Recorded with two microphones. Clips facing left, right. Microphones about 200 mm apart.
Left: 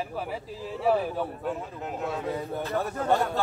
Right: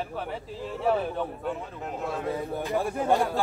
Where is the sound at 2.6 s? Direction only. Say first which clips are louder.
Right 2 dB; 10° right (ahead or behind).